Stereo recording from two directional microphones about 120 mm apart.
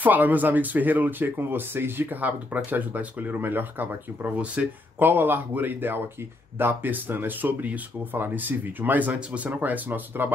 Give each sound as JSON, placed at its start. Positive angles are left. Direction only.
{"t": 0.0, "sound": "speech", "side_deg": -15}